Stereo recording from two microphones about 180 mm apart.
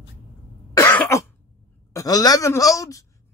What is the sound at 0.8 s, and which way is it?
Cough, 10° left (ahead or behind).